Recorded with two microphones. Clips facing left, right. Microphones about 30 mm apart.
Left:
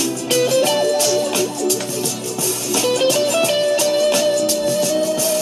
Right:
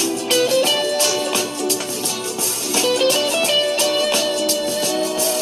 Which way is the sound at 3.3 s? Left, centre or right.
Centre.